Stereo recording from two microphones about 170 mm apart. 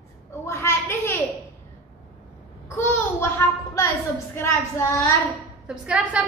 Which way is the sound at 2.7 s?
15° left (ahead or behind).